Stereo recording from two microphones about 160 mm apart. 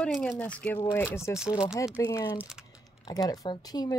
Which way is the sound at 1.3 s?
5° right (ahead or behind).